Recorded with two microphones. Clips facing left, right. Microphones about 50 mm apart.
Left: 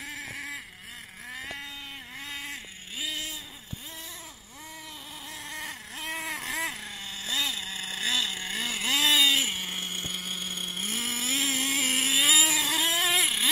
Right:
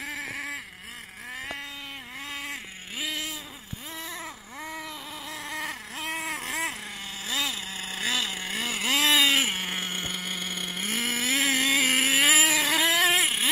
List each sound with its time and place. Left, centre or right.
0.0 s baby cry: right
2.3 s vehicle: right
3.0 s vehicle: right
5.4 s baby cry: right
7.2 s vehicle: right
7.6 s vehicle: centre
9.0 s a sound: right
11.0 s vehicle: right
13.2 s vehicle: right